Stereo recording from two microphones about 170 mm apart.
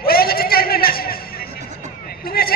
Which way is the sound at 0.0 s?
60° left (ahead or behind).